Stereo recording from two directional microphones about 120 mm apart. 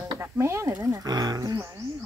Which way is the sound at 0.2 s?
20° right (ahead or behind).